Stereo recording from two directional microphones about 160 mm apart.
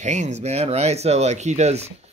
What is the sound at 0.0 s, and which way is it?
Speech, 45° right (ahead or behind).